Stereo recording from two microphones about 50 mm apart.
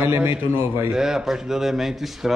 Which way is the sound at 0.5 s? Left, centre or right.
Right.